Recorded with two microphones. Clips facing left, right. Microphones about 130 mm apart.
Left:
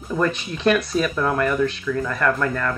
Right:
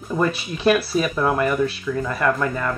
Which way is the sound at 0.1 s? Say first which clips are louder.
Even; 10° right (ahead or behind).